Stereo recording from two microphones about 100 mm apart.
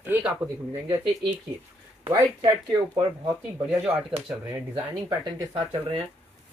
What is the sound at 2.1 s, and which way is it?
Speech, 45° right (ahead or behind).